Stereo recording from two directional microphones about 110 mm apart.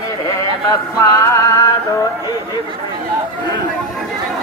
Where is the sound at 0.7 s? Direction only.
30° left (ahead or behind).